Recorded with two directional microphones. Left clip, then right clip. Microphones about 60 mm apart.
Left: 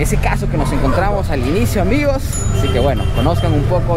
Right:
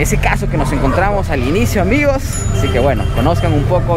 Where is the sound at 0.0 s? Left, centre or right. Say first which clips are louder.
Right 3 dB; right.